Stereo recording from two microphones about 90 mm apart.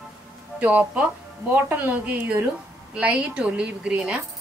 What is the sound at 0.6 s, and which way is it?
A woman's voice, 15° right (ahead or behind).